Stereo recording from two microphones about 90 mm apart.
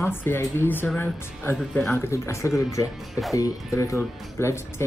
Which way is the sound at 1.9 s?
30° left (ahead or behind).